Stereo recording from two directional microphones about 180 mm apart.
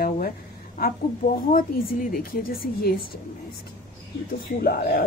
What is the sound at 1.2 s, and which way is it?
A woman's voice, 55° left (ahead or behind).